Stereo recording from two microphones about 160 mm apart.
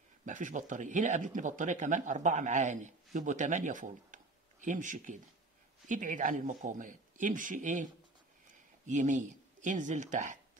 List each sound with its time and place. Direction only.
0.2 s speech: 50° right (ahead or behind)